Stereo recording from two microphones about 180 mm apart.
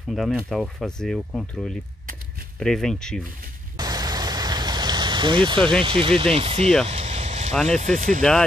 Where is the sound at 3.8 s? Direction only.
20° right (ahead or behind).